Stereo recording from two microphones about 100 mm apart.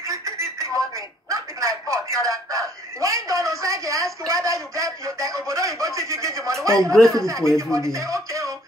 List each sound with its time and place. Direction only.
0.0 s telephone: 30° right (ahead or behind)
2.2 s a sound: 35° right (ahead or behind)
6.6 s speech: 30° right (ahead or behind)
6.9 s speech: 5° left (ahead or behind)
7.2 s speech: 30° right (ahead or behind)